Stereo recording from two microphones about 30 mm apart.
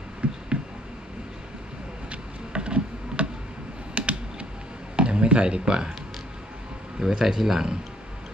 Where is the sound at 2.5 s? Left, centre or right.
Right.